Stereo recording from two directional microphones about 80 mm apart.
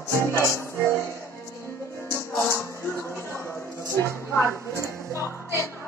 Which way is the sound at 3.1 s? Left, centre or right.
Left.